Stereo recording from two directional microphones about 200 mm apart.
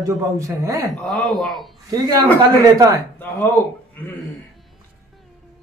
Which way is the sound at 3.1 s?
10° left (ahead or behind).